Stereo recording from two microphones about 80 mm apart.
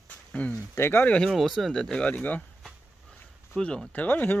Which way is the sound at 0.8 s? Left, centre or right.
Left.